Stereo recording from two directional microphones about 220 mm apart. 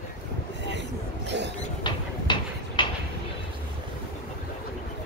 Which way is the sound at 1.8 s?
20° left (ahead or behind).